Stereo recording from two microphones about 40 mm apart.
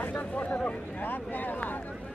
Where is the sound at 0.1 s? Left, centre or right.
Left.